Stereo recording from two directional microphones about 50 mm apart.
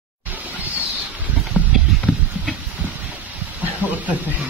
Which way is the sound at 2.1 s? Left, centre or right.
Left.